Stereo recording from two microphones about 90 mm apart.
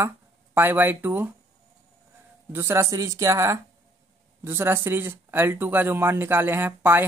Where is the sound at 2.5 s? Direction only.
30° right (ahead or behind).